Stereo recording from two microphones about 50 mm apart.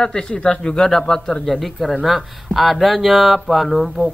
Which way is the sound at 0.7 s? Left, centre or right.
Centre.